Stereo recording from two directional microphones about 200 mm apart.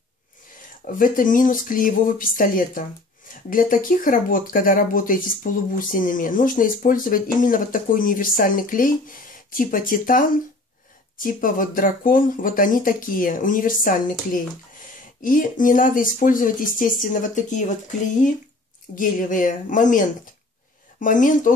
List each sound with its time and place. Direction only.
0.9 s speech: 45° left (ahead or behind)